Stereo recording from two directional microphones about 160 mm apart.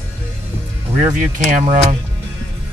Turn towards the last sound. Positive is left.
turn(degrees=-45)  # may be behind; listen again after turning